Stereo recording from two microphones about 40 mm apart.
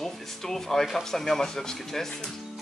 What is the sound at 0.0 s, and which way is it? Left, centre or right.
A woman's voice, centre.